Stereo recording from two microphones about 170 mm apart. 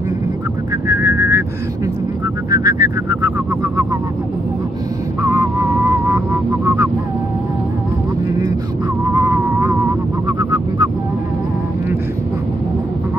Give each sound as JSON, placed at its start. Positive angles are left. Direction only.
{"t": 0.8, "sound": "a sound", "side_deg": -15}
{"t": 2.5, "sound": "vehicle", "side_deg": -20}
{"t": 5.2, "sound": "vehicle", "side_deg": -15}
{"t": 9.1, "sound": "vehicle", "side_deg": -15}